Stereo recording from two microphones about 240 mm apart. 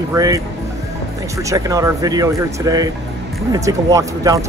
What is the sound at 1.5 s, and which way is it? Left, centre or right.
Speech, centre.